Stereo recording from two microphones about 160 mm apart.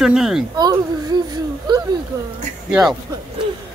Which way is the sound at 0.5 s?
25° right (ahead or behind).